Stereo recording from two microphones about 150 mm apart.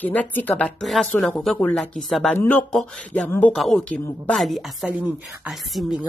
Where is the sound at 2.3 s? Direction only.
10° left (ahead or behind).